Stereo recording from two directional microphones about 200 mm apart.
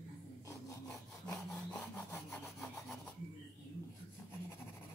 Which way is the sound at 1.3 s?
15° left (ahead or behind).